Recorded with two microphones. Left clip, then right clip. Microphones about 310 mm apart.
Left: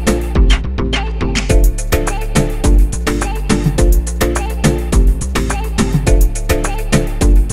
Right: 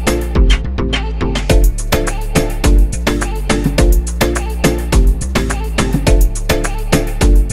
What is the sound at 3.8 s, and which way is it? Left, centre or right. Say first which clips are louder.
Music: right 1 dB; centre.